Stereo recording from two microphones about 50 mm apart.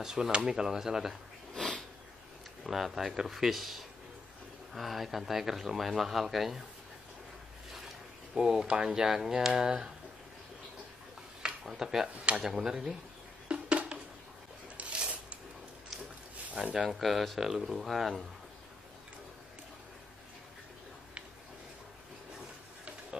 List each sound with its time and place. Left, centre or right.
0.0 s speech: centre
1.5 s sniff: centre
2.6 s speech: centre
8.4 s speech: centre
11.6 s speech: centre
13.5 s a sound: right
16.4 s a sound: right
16.7 s speech: centre